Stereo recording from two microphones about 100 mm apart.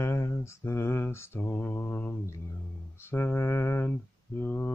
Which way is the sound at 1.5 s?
15° left (ahead or behind).